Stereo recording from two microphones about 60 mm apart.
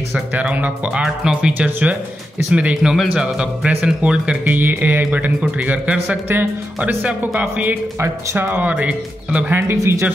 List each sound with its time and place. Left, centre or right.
0.1 s speech: right
1.0 s speech: centre
4.5 s speech: right
9.5 s speech: right